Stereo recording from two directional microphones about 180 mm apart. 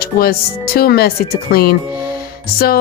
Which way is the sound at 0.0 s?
55° left (ahead or behind).